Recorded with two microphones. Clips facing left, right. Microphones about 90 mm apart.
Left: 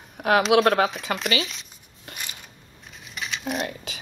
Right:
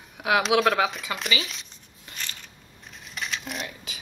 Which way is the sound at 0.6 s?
40° left (ahead or behind).